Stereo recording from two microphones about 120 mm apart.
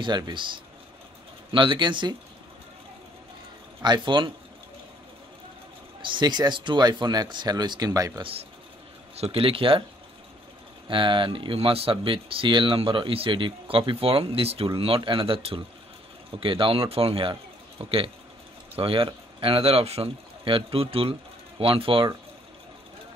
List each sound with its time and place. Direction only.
0.0 s speech: 40° right (ahead or behind)
3.8 s speech: 40° right (ahead or behind)
6.0 s speech: 40° right (ahead or behind)
8.2 s speech: 50° right (ahead or behind)
10.9 s speech: 45° right (ahead or behind)